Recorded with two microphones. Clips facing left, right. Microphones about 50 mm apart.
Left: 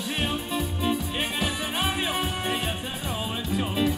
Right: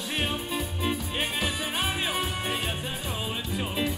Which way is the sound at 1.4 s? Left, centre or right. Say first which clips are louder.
Left 2 dB; left.